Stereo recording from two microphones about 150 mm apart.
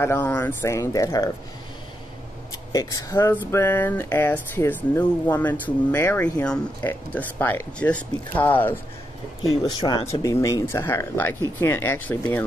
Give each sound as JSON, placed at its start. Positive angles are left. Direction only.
{"t": 0.0, "sound": "speech", "side_deg": 15}
{"t": 2.7, "sound": "speech", "side_deg": 25}
{"t": 9.5, "sound": "speech", "side_deg": 30}